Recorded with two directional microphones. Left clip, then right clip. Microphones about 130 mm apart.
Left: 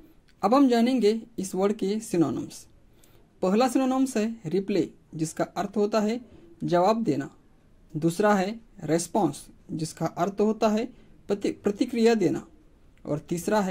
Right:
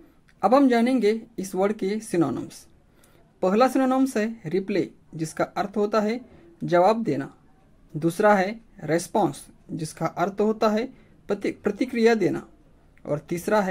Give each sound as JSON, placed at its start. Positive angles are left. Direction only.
{"t": 0.4, "sound": "speech", "side_deg": 20}